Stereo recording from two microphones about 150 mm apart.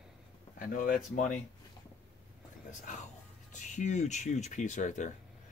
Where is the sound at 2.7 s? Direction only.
55° left (ahead or behind).